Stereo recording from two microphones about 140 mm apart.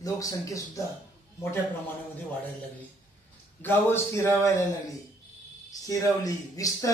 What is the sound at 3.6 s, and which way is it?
Speech, 15° left (ahead or behind).